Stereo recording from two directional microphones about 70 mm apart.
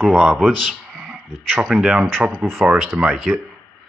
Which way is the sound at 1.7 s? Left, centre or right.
Centre.